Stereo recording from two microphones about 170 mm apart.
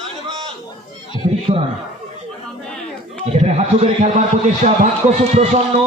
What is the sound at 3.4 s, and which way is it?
A man's voice, 35° right (ahead or behind).